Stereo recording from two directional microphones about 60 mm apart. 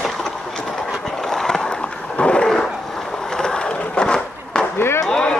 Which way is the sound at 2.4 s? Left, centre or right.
Centre.